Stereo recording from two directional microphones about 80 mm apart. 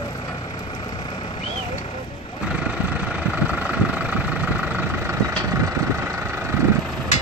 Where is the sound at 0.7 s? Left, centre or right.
Left.